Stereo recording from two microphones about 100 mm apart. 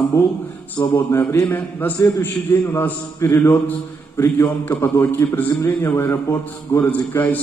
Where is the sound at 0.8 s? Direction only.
20° left (ahead or behind).